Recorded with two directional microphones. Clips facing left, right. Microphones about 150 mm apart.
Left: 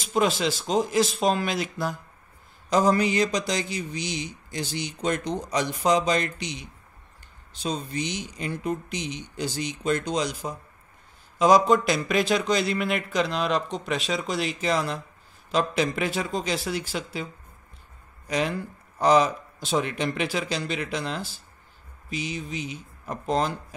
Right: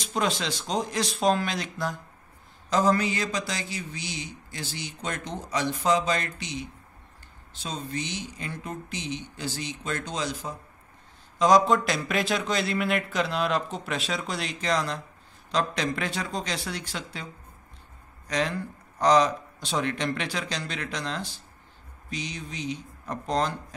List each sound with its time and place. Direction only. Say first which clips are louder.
0.0 s a man's voice: left 4 dB; 5° left (ahead or behind)
11.3 s a man's voice: left 2 dB; 5° left (ahead or behind)
18.2 s a sound: left 2 dB; 10° left (ahead or behind)
18.9 s a man's voice: left 1 dB; 10° left (ahead or behind)